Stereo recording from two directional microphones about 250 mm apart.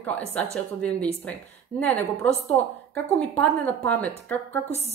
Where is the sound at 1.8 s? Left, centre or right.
Centre.